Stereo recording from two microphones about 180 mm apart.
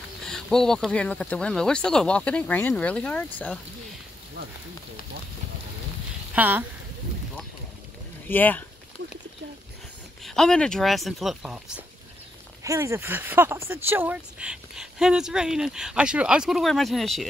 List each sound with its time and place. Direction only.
0.2 s speech: 5° left (ahead or behind)
6.3 s speech: 10° right (ahead or behind)
8.3 s speech: 10° left (ahead or behind)
10.2 s speech: 5° left (ahead or behind)
12.6 s speech: 15° right (ahead or behind); by 17.3 s centre (ahead or behind)